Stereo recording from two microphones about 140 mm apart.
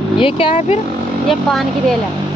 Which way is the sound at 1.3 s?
Centre (ahead or behind).